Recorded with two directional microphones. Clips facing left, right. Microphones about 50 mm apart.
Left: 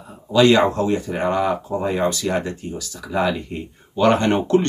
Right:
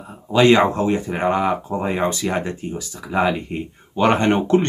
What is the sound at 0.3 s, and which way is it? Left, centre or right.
Speech, right.